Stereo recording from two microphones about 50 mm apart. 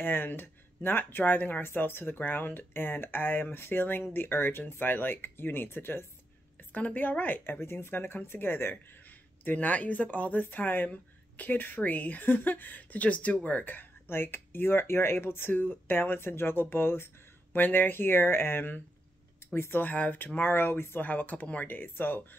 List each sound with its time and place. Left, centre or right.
0.0 s speech: left
6.7 s speech: left
9.4 s speech: left
15.5 s speech: left
19.7 s speech: left
20.3 s speech: left
21.0 s speech: left